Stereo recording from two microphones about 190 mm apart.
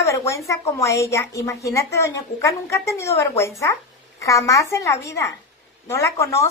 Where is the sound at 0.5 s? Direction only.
15° left (ahead or behind).